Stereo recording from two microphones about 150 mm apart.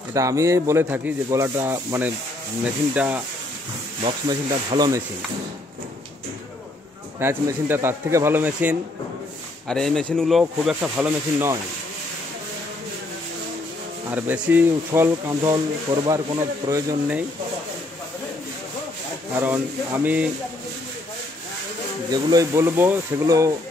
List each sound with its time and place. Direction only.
0.1 s speech: 20° right (ahead or behind)
4.3 s speech: 30° right (ahead or behind)
7.2 s speech: 15° right (ahead or behind)
9.7 s speech: 5° left (ahead or behind); by 11.5 s 10° right (ahead or behind)
14.1 s speech: 10° right (ahead or behind)
19.3 s speech: 10° right (ahead or behind)
22.1 s speech: 25° right (ahead or behind)